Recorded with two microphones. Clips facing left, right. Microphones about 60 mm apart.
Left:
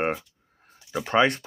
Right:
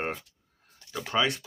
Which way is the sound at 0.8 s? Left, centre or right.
Centre.